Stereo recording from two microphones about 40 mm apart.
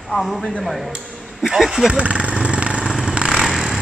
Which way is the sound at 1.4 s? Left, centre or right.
Centre.